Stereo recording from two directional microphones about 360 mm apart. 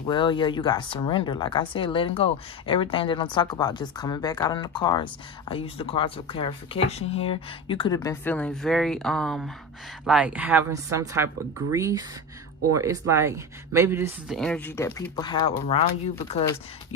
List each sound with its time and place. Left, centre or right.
0.0 s speech: centre